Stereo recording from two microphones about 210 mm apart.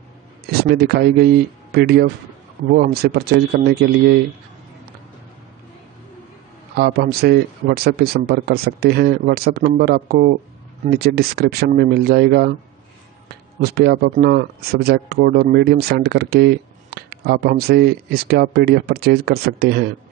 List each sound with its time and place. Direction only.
0.5 s speech: 50° right (ahead or behind)
6.7 s speech: 45° right (ahead or behind)